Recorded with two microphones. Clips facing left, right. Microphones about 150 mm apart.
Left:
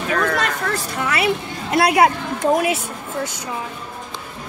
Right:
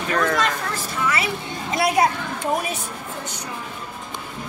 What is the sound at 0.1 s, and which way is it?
Speech, 5° right (ahead or behind).